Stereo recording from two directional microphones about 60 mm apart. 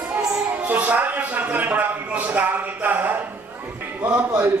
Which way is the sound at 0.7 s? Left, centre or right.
Right.